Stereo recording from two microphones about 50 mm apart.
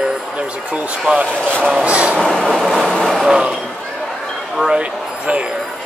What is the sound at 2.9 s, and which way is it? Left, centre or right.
Vehicle, centre.